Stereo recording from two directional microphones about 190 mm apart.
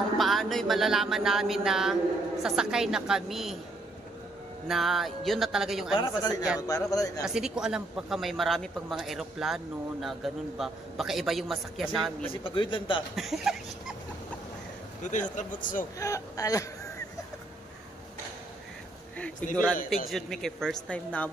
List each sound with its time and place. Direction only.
0.2 s a sound: centre (ahead or behind)
2.4 s speech: 5° right (ahead or behind)
4.6 s speech: centre (ahead or behind)
5.9 s a man's voice: 20° left (ahead or behind)
7.2 s speech: 5° right (ahead or behind)
12.5 s a man's voice: 25° left (ahead or behind)
13.1 s speech: centre (ahead or behind)
15.0 s a man's voice: 40° left (ahead or behind)
16.0 s speech: 15° left (ahead or behind)
19.5 s speech: 5° left (ahead or behind)